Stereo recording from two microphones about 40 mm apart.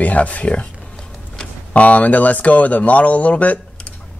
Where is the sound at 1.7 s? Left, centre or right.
Left.